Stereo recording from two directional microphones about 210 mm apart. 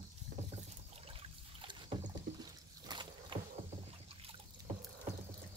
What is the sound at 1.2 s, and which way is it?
Boat, 25° right (ahead or behind).